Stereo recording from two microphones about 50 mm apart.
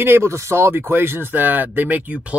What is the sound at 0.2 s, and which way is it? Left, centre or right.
Speech, right.